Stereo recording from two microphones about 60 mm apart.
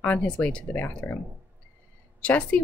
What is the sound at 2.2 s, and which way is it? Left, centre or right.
Speech, left.